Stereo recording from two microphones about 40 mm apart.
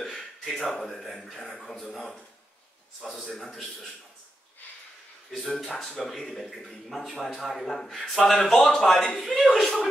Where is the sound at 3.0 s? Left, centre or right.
Centre.